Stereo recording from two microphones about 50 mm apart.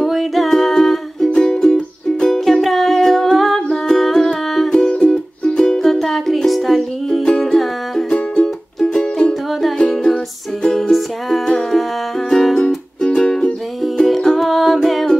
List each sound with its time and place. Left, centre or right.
0.0 s music: centre
5.9 s music: centre
13.0 s music: centre